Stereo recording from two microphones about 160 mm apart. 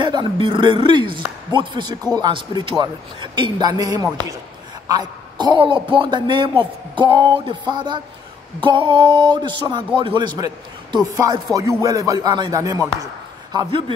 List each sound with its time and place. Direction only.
0.0 s a woman's voice: 30° right (ahead or behind)